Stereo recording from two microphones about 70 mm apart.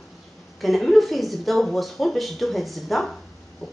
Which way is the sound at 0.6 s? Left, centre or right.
Centre.